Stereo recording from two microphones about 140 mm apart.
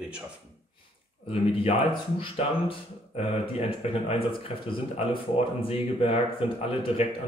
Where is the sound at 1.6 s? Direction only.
40° left (ahead or behind).